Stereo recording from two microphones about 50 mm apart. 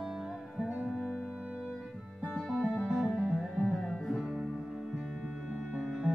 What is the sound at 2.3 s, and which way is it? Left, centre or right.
Music, centre.